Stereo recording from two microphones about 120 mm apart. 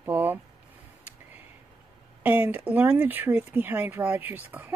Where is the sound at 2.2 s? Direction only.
15° right (ahead or behind).